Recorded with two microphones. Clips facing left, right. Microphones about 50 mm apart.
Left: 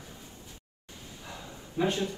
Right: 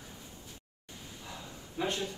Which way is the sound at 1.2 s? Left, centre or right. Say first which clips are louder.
Left 3 dB; left.